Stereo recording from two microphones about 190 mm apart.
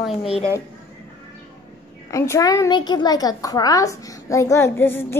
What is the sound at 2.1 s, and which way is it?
A child's voice, 15° left (ahead or behind).